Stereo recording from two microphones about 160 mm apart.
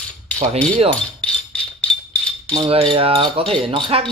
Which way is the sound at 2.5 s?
35° right (ahead or behind).